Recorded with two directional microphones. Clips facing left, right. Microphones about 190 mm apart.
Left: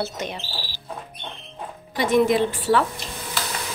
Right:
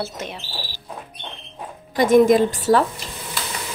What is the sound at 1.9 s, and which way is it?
Speech, 45° right (ahead or behind).